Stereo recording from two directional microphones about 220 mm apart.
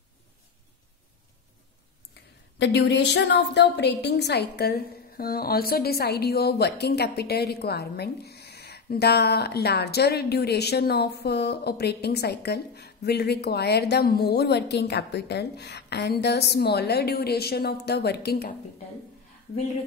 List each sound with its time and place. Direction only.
2.6 s a woman's voice: 50° left (ahead or behind)